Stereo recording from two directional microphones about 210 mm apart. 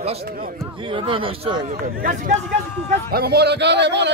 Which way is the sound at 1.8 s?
40° right (ahead or behind).